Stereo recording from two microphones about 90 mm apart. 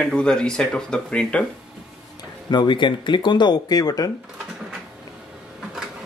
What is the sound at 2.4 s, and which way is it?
Speech, 60° left (ahead or behind).